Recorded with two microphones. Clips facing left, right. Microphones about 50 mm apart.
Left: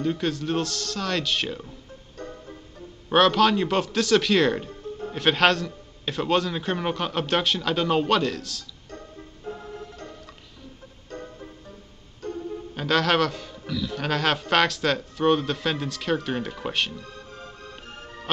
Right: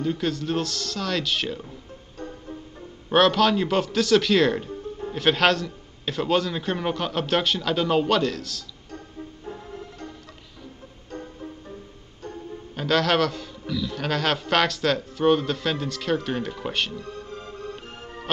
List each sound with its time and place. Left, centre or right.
0.0 s a man's voice: centre
3.1 s a man's voice: centre
12.7 s a man's voice: centre
17.0 s music: right